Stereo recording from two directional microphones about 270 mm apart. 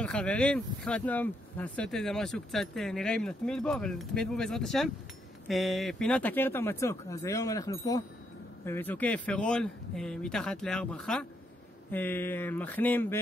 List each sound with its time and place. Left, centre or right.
0.0 s speech: centre